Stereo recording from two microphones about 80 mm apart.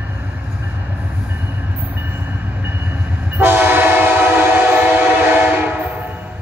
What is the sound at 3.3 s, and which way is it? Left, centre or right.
Train, right.